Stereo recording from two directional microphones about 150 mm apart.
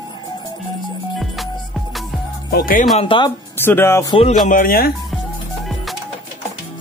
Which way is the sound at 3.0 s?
35° left (ahead or behind).